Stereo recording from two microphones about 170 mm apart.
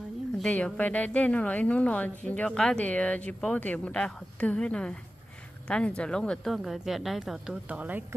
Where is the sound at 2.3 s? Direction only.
5° left (ahead or behind).